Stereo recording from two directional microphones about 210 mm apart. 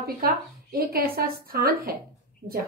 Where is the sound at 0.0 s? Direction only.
45° right (ahead or behind).